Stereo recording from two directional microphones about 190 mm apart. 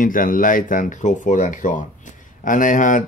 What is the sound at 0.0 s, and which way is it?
Speech, 45° left (ahead or behind).